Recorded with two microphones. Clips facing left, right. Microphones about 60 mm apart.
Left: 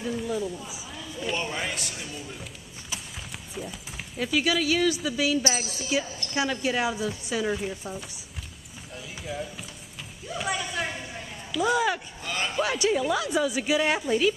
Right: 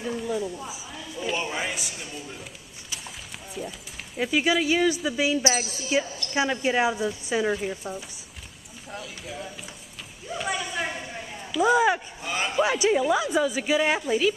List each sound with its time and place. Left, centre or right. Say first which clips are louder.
0.0 s speech: right 1 dB; centre
3.6 s a woman's voice: right 2 dB; centre
4.2 s speech: right 2 dB; centre
5.5 s a woman's voice: right 3 dB; centre
6.3 s speech: right 3 dB; centre
10.2 s a woman's voice: right 1 dB; centre